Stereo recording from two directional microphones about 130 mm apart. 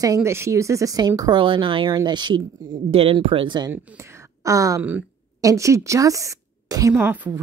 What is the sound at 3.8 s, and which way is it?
A woman's voice, 20° right (ahead or behind).